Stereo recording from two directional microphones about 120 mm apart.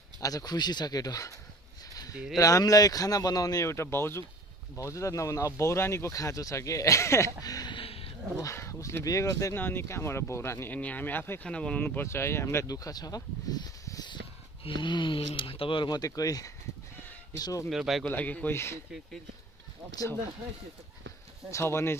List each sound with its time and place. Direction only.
0.2 s speech: 30° left (ahead or behind)
2.0 s a sound: 30° left (ahead or behind)
2.3 s speech: 30° left (ahead or behind)
7.8 s a sound: 50° left (ahead or behind)
8.4 s speech: 25° left (ahead or behind)
17.6 s speech: centre (ahead or behind)
18.1 s speech: 15° left (ahead or behind)
21.5 s speech: 25° left (ahead or behind)